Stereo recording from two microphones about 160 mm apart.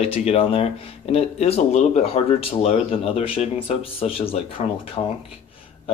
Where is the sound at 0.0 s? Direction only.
40° left (ahead or behind).